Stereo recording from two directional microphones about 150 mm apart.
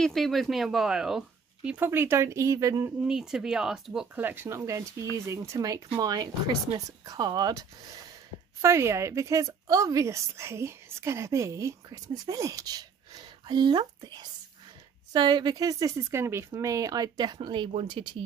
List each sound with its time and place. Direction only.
0.0 s speech: centre (ahead or behind)
1.9 s a woman's voice: 20° right (ahead or behind)
3.1 s a woman's voice: 5° right (ahead or behind); by 18.0 s 35° right (ahead or behind)